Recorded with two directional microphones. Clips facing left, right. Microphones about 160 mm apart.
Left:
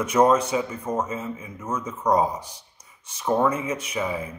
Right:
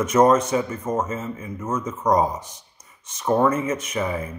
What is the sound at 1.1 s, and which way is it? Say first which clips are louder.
Speech: right 2 dB; 10° left (ahead or behind).